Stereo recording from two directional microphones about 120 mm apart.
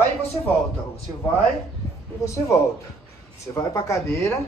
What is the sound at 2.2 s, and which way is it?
Speech, 25° left (ahead or behind).